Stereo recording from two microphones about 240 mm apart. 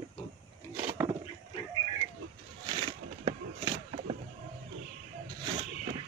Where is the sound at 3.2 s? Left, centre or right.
Right.